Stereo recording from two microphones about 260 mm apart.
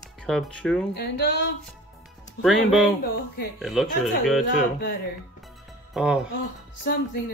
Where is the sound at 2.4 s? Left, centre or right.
Centre.